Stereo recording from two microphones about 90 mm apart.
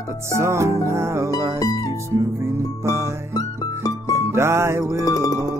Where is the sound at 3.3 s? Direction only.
45° left (ahead or behind).